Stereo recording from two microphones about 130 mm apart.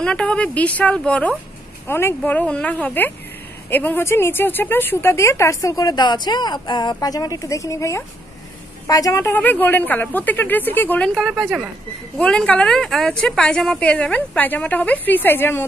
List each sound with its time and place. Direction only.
0.0 s a woman's voice: 10° left (ahead or behind)